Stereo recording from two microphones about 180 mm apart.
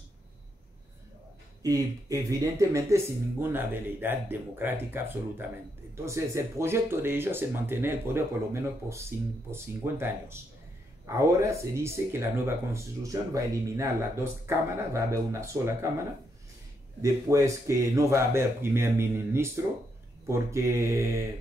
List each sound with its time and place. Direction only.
1.6 s speech: 20° right (ahead or behind)
9.5 s speech: 15° right (ahead or behind)
17.0 s speech: 15° right (ahead or behind)